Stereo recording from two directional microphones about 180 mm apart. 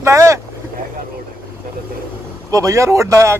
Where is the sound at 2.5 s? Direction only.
15° right (ahead or behind).